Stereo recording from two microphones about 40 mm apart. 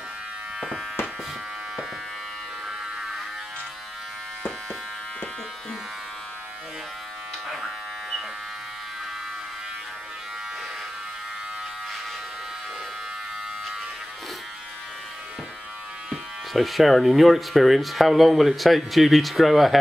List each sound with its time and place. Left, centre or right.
7.4 s electric shaver: centre
16.5 s speech: centre